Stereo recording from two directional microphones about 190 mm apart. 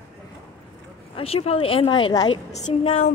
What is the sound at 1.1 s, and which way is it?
A child's voice, 30° left (ahead or behind).